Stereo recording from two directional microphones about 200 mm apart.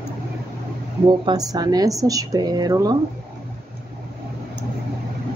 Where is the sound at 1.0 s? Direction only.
20° right (ahead or behind).